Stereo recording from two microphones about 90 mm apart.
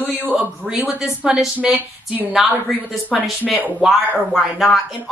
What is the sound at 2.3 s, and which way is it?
Speech, centre (ahead or behind).